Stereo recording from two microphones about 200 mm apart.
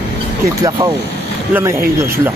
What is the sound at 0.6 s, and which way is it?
Speech, 15° right (ahead or behind).